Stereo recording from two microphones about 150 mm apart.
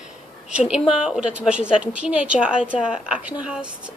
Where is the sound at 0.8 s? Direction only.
5° right (ahead or behind).